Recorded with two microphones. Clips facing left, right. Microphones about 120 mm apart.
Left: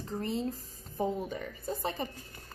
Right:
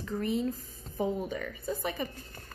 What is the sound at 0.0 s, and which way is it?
Speech, 30° left (ahead or behind).